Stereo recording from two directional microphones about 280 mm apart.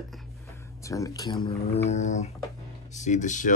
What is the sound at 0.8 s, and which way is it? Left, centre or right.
Speech, centre.